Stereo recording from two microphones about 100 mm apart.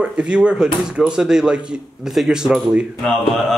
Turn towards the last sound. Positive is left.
turn(degrees=0)  # may be behind; listen again after turning